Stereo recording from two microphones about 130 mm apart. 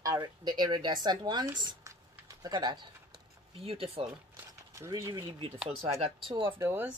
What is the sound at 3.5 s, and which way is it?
Speech, 45° right (ahead or behind).